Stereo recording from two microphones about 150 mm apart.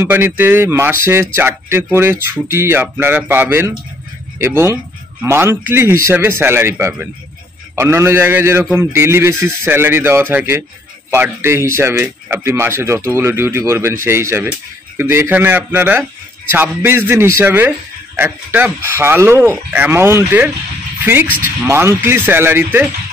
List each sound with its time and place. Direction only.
0.0 s a man's voice: 15° right (ahead or behind)